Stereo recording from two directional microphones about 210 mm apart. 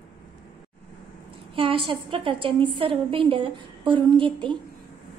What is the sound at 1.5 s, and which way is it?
A woman's voice, 25° right (ahead or behind).